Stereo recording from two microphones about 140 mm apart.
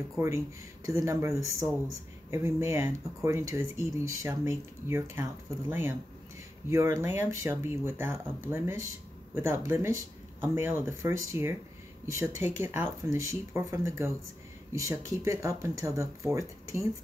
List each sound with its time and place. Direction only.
0.8 s speech: 20° right (ahead or behind)